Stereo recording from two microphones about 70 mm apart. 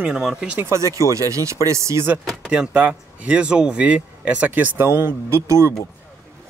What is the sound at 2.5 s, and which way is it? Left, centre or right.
Speech, centre.